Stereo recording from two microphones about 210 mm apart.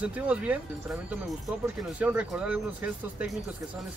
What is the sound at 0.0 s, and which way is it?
Speech, 5° right (ahead or behind).